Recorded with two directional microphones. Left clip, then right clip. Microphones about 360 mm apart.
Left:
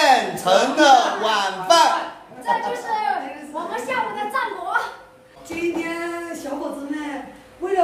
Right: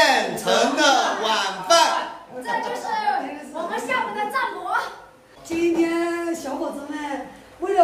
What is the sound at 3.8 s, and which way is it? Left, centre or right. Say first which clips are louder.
Speech: even; centre.